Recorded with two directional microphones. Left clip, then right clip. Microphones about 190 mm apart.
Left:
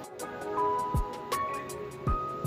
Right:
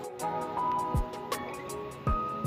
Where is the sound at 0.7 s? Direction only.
Centre (ahead or behind).